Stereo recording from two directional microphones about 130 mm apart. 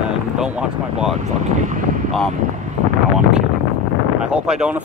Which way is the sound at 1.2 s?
65° right (ahead or behind).